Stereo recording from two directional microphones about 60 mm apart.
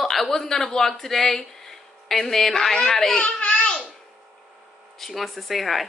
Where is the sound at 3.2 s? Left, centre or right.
Left.